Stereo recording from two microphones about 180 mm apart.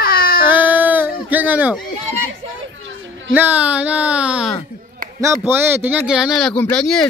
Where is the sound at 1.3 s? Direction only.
10° right (ahead or behind).